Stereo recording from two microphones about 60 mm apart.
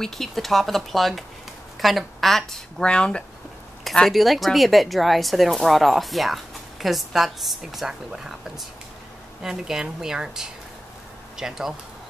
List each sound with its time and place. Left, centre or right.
0.0 s speech: centre
2.8 s speech: centre
3.8 s a sound: centre
4.1 s a woman's voice: centre